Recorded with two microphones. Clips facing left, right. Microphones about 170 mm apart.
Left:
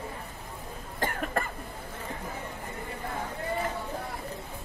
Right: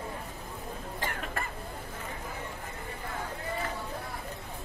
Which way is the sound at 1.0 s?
50° left (ahead or behind).